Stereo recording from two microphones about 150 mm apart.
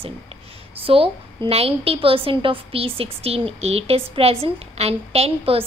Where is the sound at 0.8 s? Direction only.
40° right (ahead or behind).